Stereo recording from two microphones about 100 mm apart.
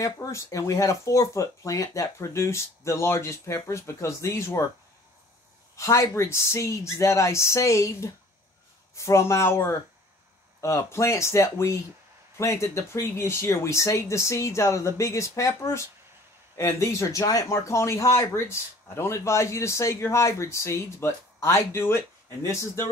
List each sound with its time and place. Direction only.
0.0 s speech: 30° left (ahead or behind)
5.8 s speech: 30° left (ahead or behind)